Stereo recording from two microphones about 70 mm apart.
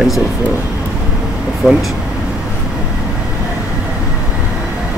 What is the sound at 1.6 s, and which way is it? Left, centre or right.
Speech, centre.